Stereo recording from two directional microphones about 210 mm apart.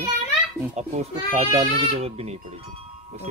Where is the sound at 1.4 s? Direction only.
30° right (ahead or behind).